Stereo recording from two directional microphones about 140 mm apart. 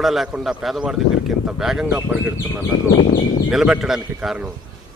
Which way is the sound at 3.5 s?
5° right (ahead or behind).